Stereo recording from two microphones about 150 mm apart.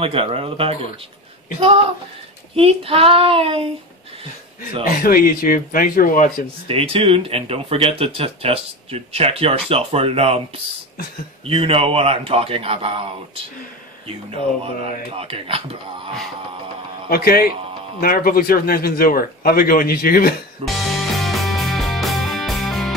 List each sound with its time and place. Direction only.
0.0 s speech: 40° right (ahead or behind)
2.5 s speech: 40° right (ahead or behind)
4.8 s speech: 75° left (ahead or behind)
6.7 s speech: 40° right (ahead or behind)
11.4 s speech: 40° right (ahead or behind)
17.1 s speech: 90° left
18.0 s speech: 75° left (ahead or behind)
20.6 s music: centre (ahead or behind)